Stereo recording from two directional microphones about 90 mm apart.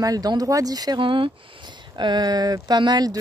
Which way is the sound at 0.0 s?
45° right (ahead or behind).